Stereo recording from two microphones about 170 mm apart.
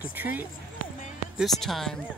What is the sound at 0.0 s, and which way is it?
Speech, 10° right (ahead or behind).